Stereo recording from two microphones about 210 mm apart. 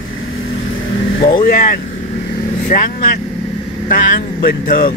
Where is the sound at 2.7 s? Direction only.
35° left (ahead or behind).